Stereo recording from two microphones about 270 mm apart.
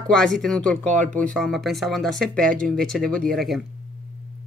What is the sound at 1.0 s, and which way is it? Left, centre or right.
Speech, right.